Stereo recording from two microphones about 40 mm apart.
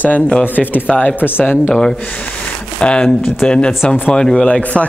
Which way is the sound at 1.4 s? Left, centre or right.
Left.